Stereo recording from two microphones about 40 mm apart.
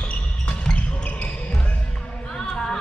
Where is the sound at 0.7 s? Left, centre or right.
Left.